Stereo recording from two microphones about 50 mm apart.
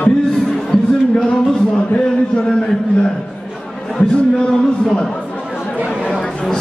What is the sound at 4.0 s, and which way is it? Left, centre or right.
Speech, centre.